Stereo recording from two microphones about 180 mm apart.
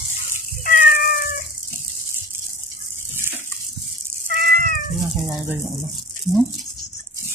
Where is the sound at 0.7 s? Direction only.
50° left (ahead or behind).